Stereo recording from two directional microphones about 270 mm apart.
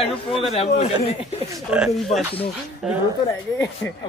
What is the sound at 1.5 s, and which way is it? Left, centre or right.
Speech, centre.